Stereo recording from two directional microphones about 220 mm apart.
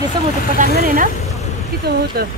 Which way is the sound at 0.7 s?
40° right (ahead or behind).